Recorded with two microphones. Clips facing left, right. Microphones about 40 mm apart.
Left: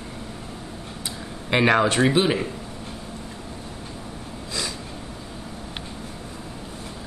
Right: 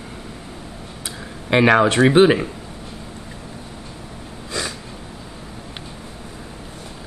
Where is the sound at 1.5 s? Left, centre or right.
Centre.